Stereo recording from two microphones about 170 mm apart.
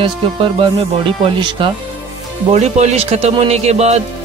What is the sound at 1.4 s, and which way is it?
Speech, 30° right (ahead or behind).